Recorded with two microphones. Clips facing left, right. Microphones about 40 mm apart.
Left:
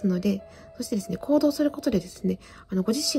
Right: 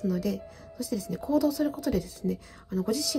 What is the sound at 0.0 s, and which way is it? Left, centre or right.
Speech, left.